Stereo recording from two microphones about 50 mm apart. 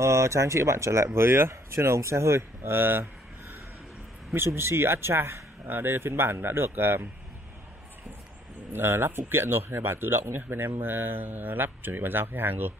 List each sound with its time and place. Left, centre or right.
0.0 s speech: right
1.5 s speech: right
4.3 s speech: right
8.7 s speech: right